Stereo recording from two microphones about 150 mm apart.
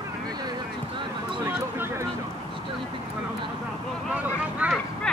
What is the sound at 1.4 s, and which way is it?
Speech, 15° right (ahead or behind).